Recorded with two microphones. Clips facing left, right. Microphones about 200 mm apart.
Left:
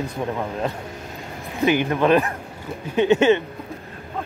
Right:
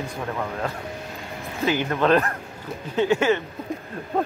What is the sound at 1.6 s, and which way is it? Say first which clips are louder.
Speech: left 3 dB; 15° left (ahead or behind).